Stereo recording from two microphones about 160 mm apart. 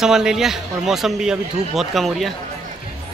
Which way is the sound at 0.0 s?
5° right (ahead or behind).